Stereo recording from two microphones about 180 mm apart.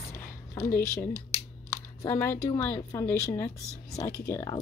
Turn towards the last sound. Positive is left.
turn(degrees=15)  # may be behind; listen again after turning